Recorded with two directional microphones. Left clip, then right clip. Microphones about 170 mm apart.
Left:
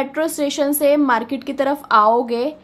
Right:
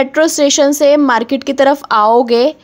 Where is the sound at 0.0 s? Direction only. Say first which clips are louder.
Right 9 dB; 45° right (ahead or behind).